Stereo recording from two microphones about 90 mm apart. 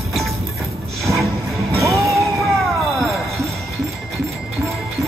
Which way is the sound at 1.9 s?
35° right (ahead or behind).